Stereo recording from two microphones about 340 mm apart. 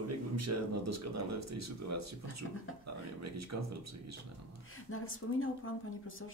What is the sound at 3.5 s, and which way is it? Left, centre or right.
Speech, right.